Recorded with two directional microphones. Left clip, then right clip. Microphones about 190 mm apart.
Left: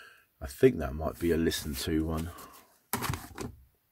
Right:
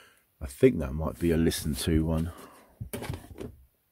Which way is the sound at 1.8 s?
45° right (ahead or behind).